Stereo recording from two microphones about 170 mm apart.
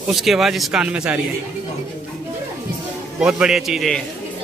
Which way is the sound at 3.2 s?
5° right (ahead or behind).